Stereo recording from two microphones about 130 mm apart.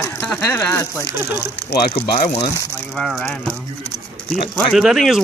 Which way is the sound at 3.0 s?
10° left (ahead or behind).